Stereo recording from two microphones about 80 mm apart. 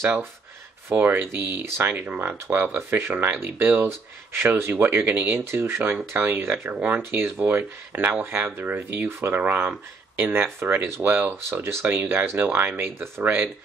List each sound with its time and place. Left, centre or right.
0.8 s speech: right